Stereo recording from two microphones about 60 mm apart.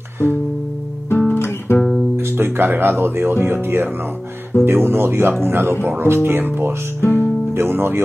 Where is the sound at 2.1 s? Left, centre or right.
Right.